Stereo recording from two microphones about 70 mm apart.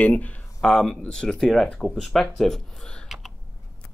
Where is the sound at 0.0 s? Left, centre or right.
Left.